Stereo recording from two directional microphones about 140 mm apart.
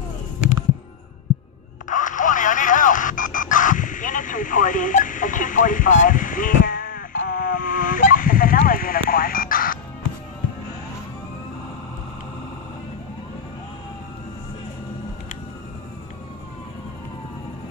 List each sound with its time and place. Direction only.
1.9 s telephone dialing: 65° left (ahead or behind); by 9.8 s 90° left